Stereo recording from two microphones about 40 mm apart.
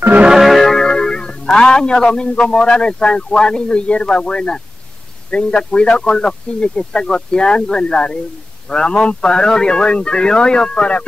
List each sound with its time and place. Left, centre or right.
0.3 s music: centre
0.8 s music: centre
2.2 s speech: left
8.9 s speech: left
9.3 s speech: centre